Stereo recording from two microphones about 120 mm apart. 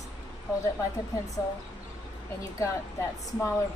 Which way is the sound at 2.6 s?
25° left (ahead or behind).